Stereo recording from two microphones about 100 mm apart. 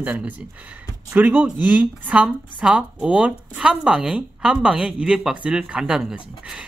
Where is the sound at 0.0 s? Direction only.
15° right (ahead or behind).